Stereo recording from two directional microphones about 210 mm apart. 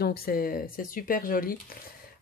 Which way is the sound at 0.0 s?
45° left (ahead or behind).